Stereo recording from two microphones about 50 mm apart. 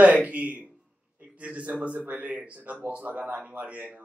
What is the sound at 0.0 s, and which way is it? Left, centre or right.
Speech, right.